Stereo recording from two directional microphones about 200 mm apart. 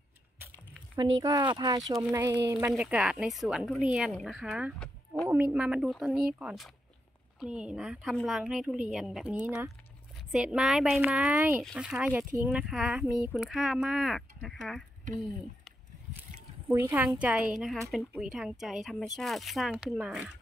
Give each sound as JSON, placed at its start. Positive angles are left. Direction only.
{"t": 1.2, "sound": "speech", "side_deg": -20}
{"t": 2.8, "sound": "a woman's voice", "side_deg": -5}
{"t": 5.3, "sound": "a woman's voice", "side_deg": -5}
{"t": 16.2, "sound": "a sound", "side_deg": -10}
{"t": 17.2, "sound": "a woman's voice", "side_deg": -5}